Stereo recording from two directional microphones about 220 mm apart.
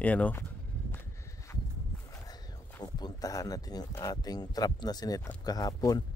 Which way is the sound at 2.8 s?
15° left (ahead or behind).